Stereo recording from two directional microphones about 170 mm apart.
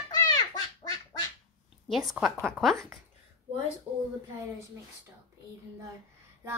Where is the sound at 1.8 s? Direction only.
Centre (ahead or behind).